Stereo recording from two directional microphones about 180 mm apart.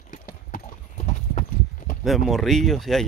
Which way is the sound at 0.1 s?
50° left (ahead or behind).